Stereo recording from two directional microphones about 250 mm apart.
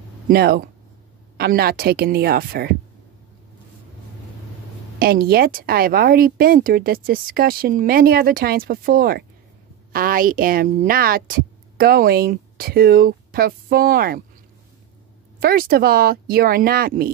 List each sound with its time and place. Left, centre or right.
0.3 s speech: right
4.9 s speech: right
15.4 s speech: right